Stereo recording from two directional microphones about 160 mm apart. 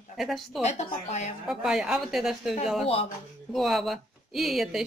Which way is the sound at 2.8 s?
35° left (ahead or behind).